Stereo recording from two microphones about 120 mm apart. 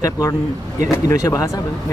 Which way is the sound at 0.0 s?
25° left (ahead or behind).